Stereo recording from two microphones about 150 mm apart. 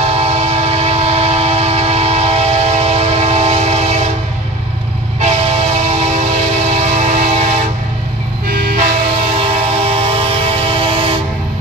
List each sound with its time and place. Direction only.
0.0 s train: 45° right (ahead or behind)
5.2 s train: 45° right (ahead or behind)
8.5 s vehicle: 90° right
8.7 s train: 45° right (ahead or behind)